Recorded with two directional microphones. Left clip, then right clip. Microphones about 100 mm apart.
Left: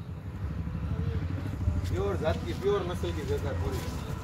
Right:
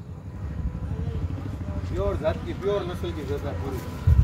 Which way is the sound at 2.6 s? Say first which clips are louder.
Right 2 dB; 20° right (ahead or behind).